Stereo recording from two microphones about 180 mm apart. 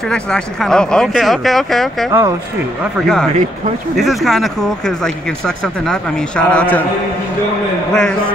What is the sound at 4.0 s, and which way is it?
A man's voice, centre (ahead or behind).